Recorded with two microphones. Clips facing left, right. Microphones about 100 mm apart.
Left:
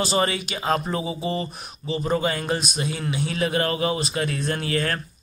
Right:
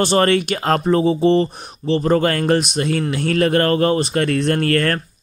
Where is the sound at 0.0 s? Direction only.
60° right (ahead or behind).